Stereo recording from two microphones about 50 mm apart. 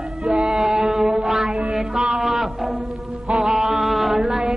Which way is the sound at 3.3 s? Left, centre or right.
Centre.